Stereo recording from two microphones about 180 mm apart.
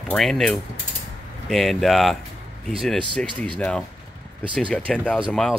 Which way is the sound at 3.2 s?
5° left (ahead or behind).